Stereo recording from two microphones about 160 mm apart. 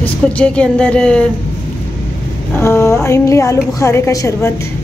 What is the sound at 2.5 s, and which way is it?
A woman's voice, 15° left (ahead or behind).